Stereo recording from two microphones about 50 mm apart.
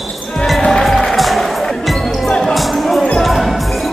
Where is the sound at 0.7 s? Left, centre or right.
Centre.